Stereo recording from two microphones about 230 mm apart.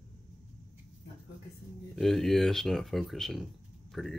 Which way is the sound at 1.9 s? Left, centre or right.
Centre.